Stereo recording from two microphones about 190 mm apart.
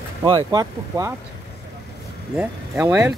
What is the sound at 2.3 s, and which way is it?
Speech, 5° right (ahead or behind).